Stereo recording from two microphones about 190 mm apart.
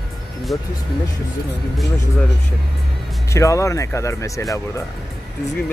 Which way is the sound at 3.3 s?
15° left (ahead or behind).